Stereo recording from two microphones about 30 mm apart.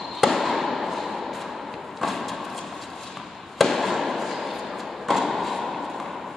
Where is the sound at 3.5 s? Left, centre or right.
Centre.